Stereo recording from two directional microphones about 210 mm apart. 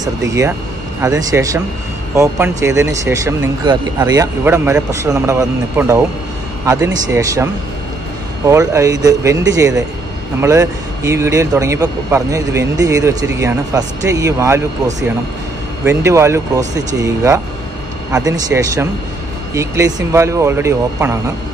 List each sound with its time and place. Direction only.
0.0 s speech: 15° right (ahead or behind)
8.5 s speech: 15° right (ahead or behind)
15.8 s speech: 10° right (ahead or behind)